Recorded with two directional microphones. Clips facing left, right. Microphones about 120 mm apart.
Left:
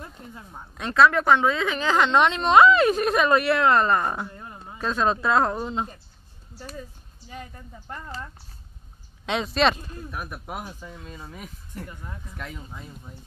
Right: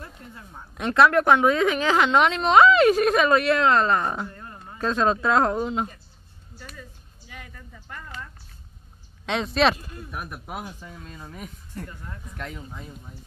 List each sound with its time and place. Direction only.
0.0 s speech: 15° left (ahead or behind)
0.7 s a woman's voice: 5° right (ahead or behind)
5.6 s a woman's voice: 5° right (ahead or behind)
6.6 s speech: 35° left (ahead or behind)
9.2 s a woman's voice: centre (ahead or behind)
11.9 s speech: 15° left (ahead or behind)
12.3 s a woman's voice: centre (ahead or behind)